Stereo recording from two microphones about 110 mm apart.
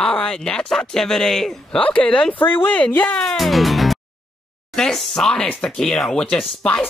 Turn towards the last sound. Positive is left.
turn(degrees=10)  # may be behind; listen again after turning